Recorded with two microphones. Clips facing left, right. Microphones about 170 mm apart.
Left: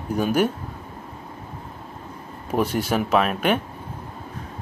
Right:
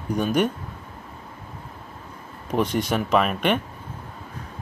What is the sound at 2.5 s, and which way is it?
Speech, 5° left (ahead or behind).